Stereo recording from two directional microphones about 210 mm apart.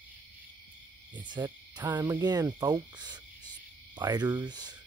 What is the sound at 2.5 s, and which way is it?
Cricket, 20° right (ahead or behind).